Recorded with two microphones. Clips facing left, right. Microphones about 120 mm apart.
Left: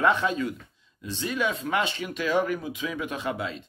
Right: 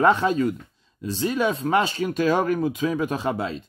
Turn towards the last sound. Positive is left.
turn(degrees=-35)  # may be behind; listen again after turning